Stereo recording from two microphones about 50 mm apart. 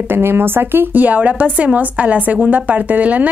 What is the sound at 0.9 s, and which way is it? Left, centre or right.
A woman's voice, right.